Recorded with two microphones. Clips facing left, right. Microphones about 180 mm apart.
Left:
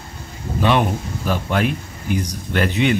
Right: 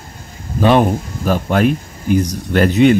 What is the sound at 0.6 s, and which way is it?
Speech, 40° right (ahead or behind).